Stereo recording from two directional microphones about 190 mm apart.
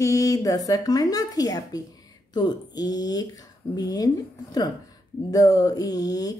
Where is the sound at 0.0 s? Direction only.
15° left (ahead or behind).